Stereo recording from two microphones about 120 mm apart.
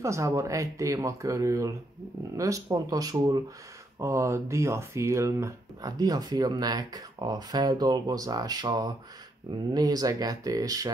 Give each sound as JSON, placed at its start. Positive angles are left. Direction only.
{"t": 0.0, "sound": "speech", "side_deg": -25}